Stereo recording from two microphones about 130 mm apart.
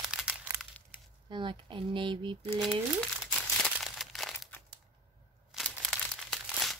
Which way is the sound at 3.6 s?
Centre (ahead or behind).